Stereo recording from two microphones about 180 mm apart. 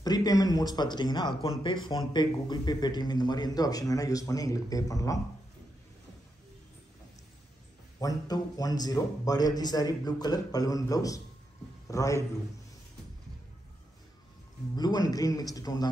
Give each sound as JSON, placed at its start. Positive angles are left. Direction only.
{"t": 0.0, "sound": "speech", "side_deg": 20}
{"t": 8.0, "sound": "a man's voice", "side_deg": 20}
{"t": 14.8, "sound": "speech", "side_deg": 20}